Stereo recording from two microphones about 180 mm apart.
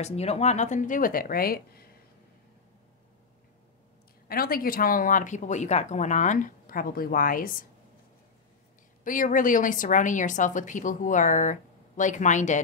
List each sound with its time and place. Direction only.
0.0 s speech: 35° left (ahead or behind); by 1.9 s 55° left (ahead or behind)
4.3 s speech: 55° left (ahead or behind)
9.0 s speech: 50° left (ahead or behind)